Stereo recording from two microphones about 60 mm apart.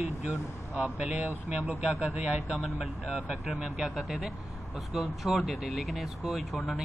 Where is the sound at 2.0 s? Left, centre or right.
Right.